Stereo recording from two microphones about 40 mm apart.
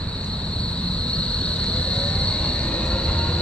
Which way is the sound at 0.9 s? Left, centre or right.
Left.